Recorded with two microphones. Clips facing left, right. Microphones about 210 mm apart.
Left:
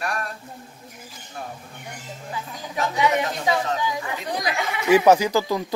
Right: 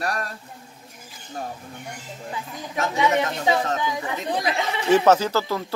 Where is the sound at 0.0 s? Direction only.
35° right (ahead or behind).